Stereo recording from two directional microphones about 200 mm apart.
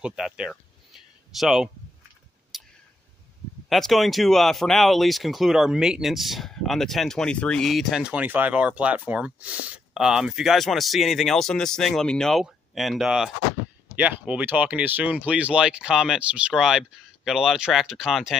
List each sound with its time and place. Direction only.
0.0 s a sound: 5° right (ahead or behind)
2.5 s clicking: centre (ahead or behind)
3.6 s speech: centre (ahead or behind)